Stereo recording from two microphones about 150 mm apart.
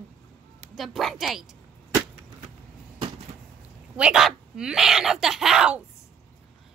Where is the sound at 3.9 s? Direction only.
5° right (ahead or behind).